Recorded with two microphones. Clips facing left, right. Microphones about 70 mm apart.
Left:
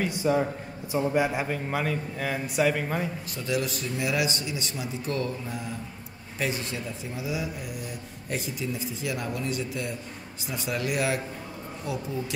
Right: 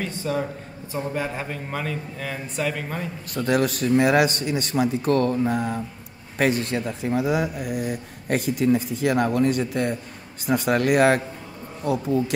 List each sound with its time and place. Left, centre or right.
0.0 s a man's voice: centre
3.3 s a man's voice: right